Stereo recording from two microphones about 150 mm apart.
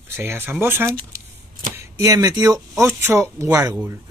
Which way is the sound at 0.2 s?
15° right (ahead or behind).